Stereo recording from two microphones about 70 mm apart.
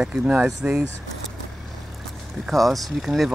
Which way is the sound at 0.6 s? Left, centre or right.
Centre.